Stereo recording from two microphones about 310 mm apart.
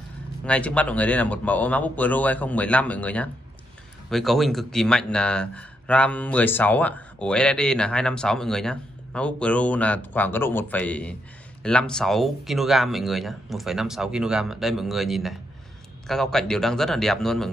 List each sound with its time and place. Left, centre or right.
0.5 s speech: centre